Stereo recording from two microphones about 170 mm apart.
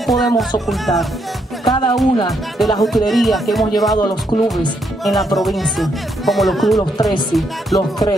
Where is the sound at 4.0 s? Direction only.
25° left (ahead or behind).